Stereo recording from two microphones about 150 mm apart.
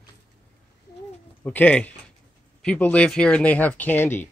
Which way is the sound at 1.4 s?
10° left (ahead or behind).